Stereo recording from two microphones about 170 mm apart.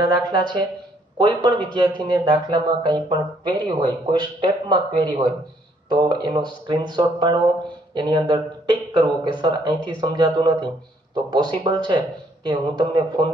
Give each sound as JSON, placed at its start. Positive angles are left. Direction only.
{"t": 0.0, "sound": "speech", "side_deg": -25}